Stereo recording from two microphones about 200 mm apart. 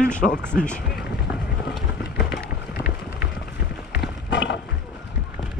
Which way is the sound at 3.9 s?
60° left (ahead or behind).